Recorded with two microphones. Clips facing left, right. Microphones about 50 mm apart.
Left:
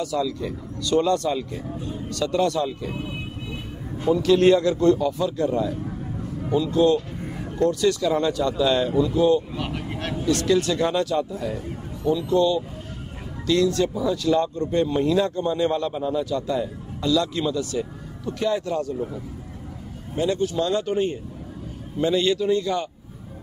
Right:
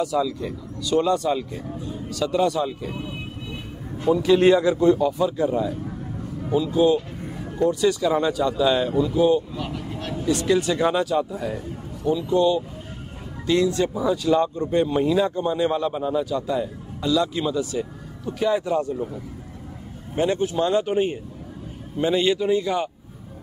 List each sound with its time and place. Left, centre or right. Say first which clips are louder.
0.0 s speech: right 2 dB; centre
2.9 s speech: left 1 dB; centre
4.1 s a man's voice: even; centre
9.6 s vehicle: left 1 dB; left
10.2 s speech: even; centre
20.2 s speech: right 1 dB; right